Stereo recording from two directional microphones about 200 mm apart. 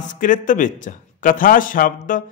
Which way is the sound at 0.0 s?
40° left (ahead or behind).